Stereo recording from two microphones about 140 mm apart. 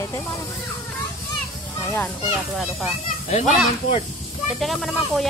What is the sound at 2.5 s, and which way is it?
Speech, 5° right (ahead or behind).